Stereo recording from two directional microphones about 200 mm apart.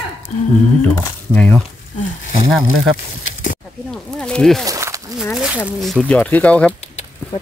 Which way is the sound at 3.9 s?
5° left (ahead or behind).